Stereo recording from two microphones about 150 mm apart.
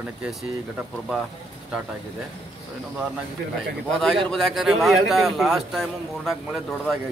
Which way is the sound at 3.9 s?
Centre (ahead or behind).